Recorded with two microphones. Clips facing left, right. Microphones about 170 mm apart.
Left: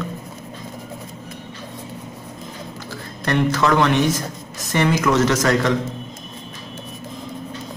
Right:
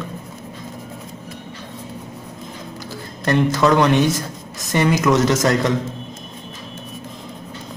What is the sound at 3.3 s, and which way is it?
Speech, 20° right (ahead or behind).